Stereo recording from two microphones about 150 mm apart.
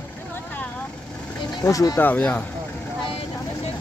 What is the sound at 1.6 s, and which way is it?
Speech, 20° left (ahead or behind).